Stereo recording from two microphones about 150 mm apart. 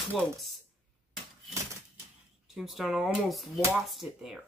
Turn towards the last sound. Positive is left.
turn(degrees=-5)  # may be behind; listen again after turning